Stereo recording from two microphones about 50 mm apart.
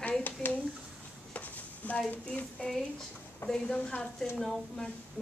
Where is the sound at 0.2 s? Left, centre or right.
Left.